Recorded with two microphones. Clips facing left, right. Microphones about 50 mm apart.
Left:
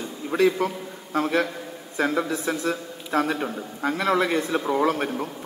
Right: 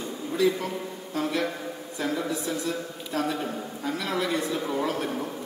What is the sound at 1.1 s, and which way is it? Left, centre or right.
A man's voice, left.